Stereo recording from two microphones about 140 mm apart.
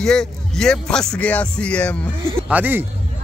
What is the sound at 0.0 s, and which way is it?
Speech, 5° left (ahead or behind).